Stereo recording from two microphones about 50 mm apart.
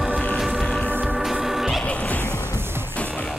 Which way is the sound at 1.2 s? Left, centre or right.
Centre.